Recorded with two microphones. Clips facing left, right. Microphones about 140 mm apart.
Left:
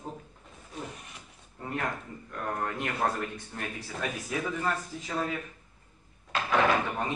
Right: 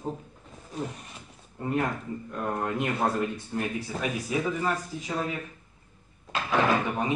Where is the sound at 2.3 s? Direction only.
20° right (ahead or behind).